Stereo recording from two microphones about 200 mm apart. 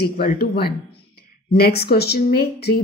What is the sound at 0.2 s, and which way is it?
A woman's voice, 50° left (ahead or behind).